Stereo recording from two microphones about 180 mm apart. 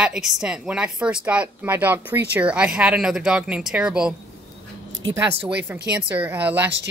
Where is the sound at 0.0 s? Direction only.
5° right (ahead or behind).